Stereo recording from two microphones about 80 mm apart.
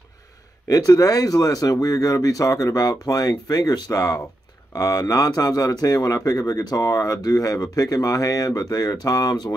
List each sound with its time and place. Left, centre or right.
0.7 s speech: left